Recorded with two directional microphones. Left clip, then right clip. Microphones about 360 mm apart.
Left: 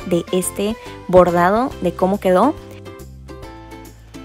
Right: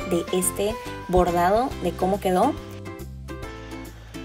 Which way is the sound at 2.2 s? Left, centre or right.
Left.